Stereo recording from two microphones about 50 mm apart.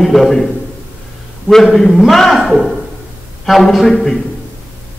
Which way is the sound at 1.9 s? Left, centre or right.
Centre.